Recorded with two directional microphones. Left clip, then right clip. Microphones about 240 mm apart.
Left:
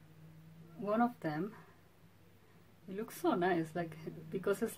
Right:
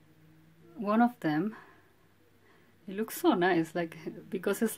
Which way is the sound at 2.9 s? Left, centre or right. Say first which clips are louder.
Right 7 dB; right.